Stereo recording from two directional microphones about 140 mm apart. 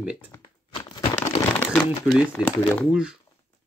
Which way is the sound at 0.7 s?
35° left (ahead or behind).